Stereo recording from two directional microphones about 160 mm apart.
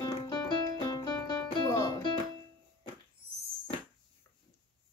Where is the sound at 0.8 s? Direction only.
25° left (ahead or behind).